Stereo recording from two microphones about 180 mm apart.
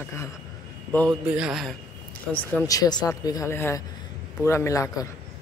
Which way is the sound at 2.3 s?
15° left (ahead or behind).